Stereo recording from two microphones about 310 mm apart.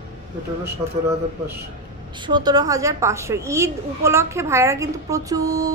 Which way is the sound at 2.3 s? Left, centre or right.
Centre.